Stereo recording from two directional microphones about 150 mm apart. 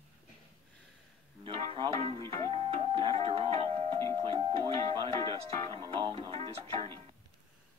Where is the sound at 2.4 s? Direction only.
35° right (ahead or behind).